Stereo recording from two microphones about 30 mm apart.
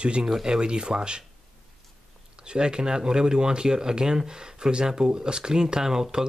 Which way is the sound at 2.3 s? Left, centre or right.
Right.